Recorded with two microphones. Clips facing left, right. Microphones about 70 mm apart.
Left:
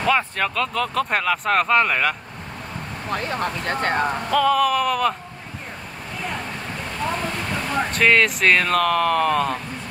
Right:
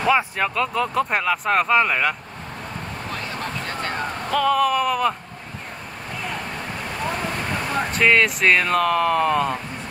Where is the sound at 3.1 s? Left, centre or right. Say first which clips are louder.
Left 7 dB; left.